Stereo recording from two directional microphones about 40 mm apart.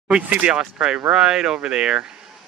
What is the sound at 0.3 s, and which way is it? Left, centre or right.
Speech, right.